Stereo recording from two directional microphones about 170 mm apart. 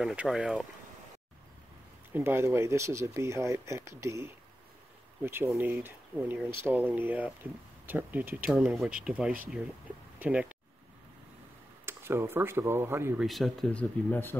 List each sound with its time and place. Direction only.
0.0 s speech: 5° right (ahead or behind)
2.1 s speech: 15° right (ahead or behind)
11.8 s speech: 15° right (ahead or behind)
13.2 s speech: centre (ahead or behind)